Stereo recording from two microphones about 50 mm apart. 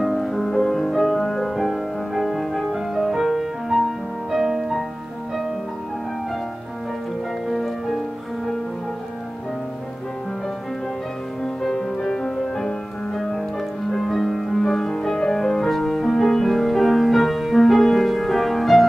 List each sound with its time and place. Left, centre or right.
0.0 s music: centre
7.4 s music: centre
11.4 s music: centre